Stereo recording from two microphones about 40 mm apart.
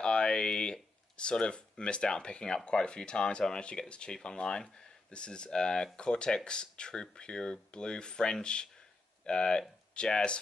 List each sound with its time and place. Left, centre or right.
0.0 s speech: left